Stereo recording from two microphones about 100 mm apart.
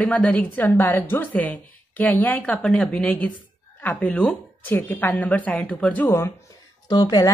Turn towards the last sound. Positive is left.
turn(degrees=40)  # may be behind; listen again after turning